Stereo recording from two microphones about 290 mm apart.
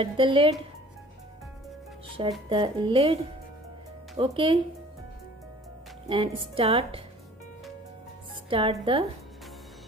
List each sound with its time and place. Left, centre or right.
0.0 s speech: centre
2.2 s speech: centre
4.2 s speech: centre
6.0 s speech: centre
8.5 s speech: centre